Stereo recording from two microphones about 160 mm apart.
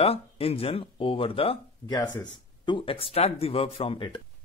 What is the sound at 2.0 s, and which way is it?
Speech, 20° left (ahead or behind).